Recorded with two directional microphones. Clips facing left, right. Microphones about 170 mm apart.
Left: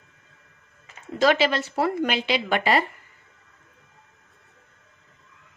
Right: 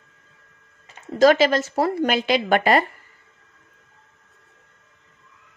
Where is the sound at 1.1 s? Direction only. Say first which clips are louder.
Right 5 dB; 40° right (ahead or behind).